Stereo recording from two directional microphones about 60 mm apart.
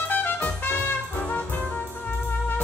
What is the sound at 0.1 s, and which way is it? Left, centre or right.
Trumpet, left.